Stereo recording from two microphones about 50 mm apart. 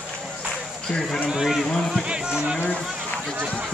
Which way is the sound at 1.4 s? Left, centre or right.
Centre.